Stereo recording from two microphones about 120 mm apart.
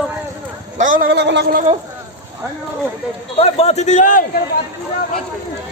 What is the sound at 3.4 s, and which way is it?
Speech, 55° left (ahead or behind).